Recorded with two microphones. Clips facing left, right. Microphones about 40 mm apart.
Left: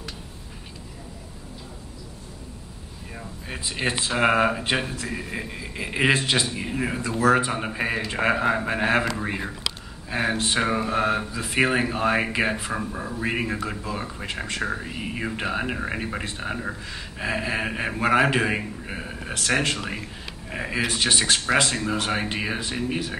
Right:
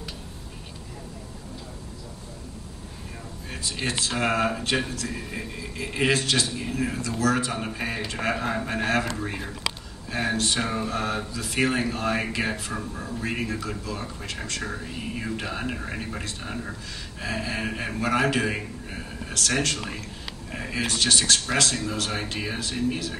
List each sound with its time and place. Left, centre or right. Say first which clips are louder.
3.4 s speech: left 3 dB; centre